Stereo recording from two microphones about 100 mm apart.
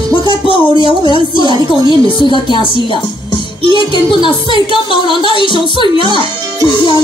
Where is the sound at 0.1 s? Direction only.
55° left (ahead or behind).